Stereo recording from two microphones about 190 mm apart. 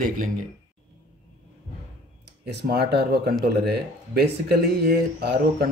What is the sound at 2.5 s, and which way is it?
Speech, 60° right (ahead or behind).